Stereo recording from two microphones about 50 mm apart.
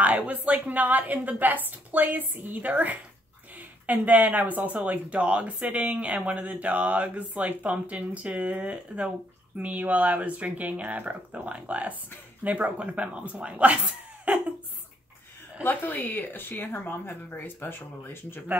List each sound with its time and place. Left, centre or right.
0.0 s speech: right
14.3 s a sound: right
15.6 s speech: left